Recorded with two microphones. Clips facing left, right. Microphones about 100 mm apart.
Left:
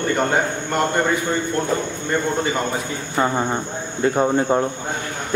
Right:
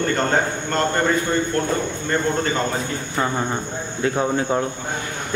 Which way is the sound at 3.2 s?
15° left (ahead or behind).